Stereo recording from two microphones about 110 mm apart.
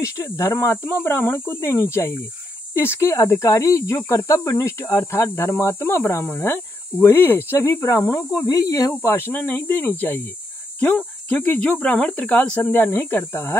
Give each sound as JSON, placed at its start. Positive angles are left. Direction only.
{"t": 0.0, "sound": "speech", "side_deg": 25}